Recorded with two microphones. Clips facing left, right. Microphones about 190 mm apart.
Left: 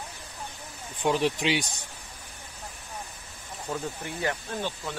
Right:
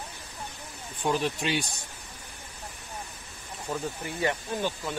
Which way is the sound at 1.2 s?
15° left (ahead or behind).